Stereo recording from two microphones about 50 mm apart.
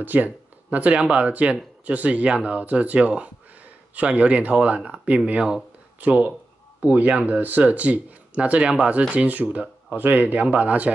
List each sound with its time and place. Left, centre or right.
0.0 s speech: right